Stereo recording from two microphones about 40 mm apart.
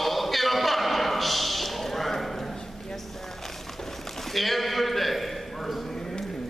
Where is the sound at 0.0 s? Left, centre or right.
Centre.